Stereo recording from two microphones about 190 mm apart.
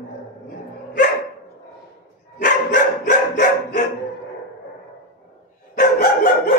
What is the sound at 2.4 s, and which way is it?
Dog, 40° left (ahead or behind).